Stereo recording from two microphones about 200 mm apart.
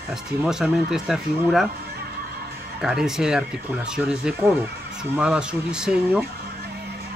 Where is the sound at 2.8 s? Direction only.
Centre (ahead or behind).